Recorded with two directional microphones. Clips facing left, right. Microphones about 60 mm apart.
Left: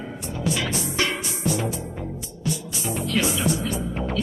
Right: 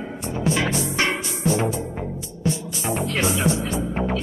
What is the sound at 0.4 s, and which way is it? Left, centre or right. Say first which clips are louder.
Music: right 4 dB; right.